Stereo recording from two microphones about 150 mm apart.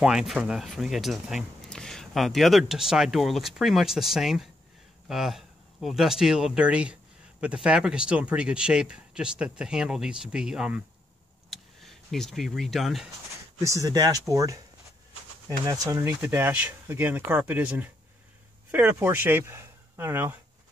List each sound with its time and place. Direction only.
0.0 s speech: 5° right (ahead or behind)
13.6 s speech: 20° right (ahead or behind)
15.6 s speech: 20° right (ahead or behind)